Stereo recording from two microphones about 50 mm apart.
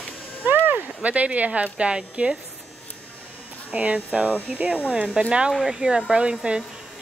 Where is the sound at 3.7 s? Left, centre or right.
Right.